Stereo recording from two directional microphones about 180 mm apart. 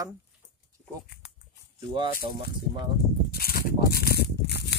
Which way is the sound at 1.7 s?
25° right (ahead or behind).